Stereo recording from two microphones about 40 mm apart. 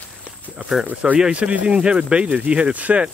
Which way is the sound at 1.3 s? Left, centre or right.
Right.